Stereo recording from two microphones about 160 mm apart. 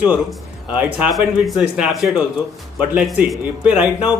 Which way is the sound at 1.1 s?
Centre (ahead or behind).